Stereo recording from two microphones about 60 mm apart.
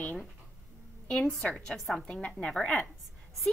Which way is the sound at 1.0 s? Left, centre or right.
Centre.